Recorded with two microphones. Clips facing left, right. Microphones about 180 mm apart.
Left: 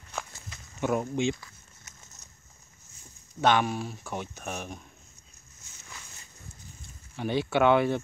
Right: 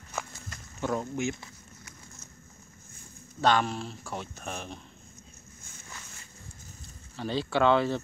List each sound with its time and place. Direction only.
0.1 s walk: centre (ahead or behind)
0.7 s speech: 15° left (ahead or behind)
3.3 s speech: 10° left (ahead or behind)
7.2 s speech: 15° left (ahead or behind)